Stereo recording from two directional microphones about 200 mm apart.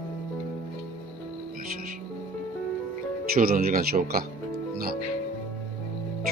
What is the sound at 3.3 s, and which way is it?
Speech, 45° right (ahead or behind).